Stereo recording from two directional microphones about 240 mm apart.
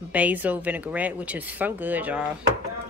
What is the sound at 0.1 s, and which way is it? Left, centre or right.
Speech, centre.